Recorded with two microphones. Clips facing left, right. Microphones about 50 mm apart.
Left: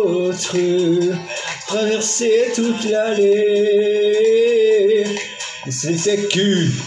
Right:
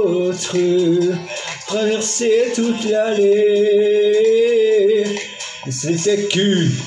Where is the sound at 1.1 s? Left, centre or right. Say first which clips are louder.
Even; left.